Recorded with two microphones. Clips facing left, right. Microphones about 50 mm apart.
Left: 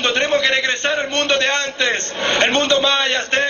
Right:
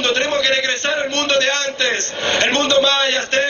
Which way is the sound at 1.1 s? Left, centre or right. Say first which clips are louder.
Right 1 dB; centre.